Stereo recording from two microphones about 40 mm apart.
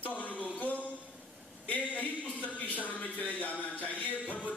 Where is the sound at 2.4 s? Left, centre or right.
Left.